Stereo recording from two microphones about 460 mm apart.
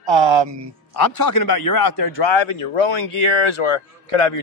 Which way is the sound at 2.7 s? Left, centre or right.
Left.